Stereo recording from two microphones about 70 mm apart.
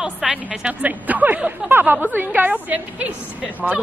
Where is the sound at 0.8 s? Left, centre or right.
Right.